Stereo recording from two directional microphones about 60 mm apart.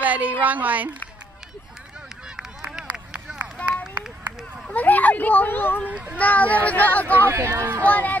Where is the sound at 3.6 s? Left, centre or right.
Left.